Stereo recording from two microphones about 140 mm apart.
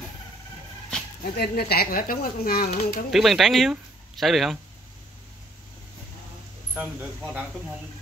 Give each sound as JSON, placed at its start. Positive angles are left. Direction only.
{"t": 1.2, "sound": "speech", "side_deg": 90}
{"t": 3.1, "sound": "speech", "side_deg": 0}
{"t": 6.7, "sound": "speech", "side_deg": -10}